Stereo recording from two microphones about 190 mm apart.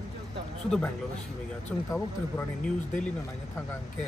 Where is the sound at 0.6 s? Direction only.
5° left (ahead or behind).